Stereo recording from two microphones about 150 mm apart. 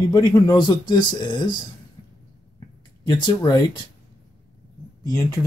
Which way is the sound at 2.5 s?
25° left (ahead or behind).